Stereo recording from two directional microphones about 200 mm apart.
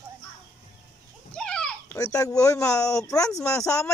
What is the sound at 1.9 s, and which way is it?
Speech, 15° left (ahead or behind).